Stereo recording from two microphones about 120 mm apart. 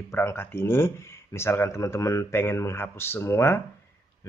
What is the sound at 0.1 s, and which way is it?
Speech, 20° left (ahead or behind).